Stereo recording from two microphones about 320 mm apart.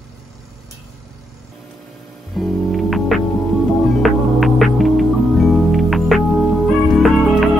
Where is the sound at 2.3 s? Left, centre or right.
Centre.